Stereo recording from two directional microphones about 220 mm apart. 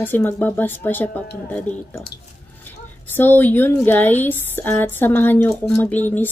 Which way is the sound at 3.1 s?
10° left (ahead or behind).